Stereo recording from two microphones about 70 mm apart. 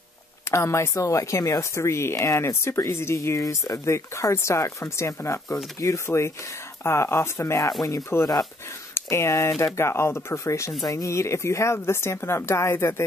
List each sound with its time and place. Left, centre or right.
0.5 s speech: left